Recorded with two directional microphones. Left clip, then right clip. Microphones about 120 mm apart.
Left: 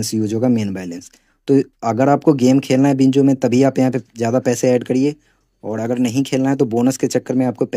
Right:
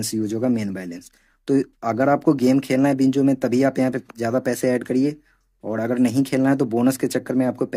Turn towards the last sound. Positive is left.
turn(degrees=20)  # may be behind; listen again after turning